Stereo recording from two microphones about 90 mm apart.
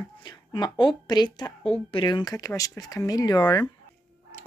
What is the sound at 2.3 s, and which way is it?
Speech, 40° left (ahead or behind).